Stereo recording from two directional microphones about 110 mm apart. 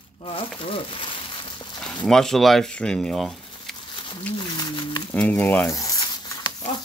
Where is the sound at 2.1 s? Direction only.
5° left (ahead or behind).